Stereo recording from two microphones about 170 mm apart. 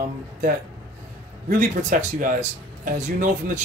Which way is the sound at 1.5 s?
50° right (ahead or behind).